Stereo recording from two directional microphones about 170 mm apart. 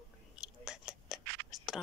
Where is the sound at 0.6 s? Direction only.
5° right (ahead or behind).